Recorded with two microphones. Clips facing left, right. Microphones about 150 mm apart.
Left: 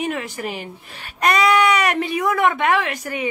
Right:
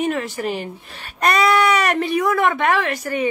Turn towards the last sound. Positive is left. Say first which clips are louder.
# right 2 dB
turn(degrees=15)  # may be behind; listen again after turning